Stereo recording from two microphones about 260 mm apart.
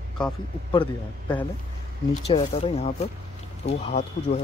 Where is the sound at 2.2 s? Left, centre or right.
Left.